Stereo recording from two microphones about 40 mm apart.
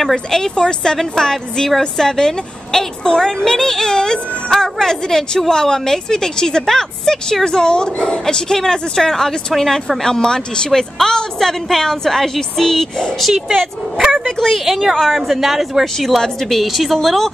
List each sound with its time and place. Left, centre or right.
0.1 s a woman's voice: centre
9.5 s a woman's voice: centre
14.1 s a woman's voice: centre